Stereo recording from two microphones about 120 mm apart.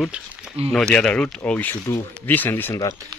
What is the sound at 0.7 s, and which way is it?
Speech, 5° left (ahead or behind).